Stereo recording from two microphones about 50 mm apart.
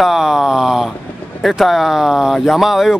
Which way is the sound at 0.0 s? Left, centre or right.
Centre.